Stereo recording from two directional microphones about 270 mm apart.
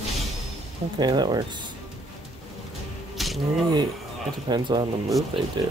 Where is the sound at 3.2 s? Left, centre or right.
Centre.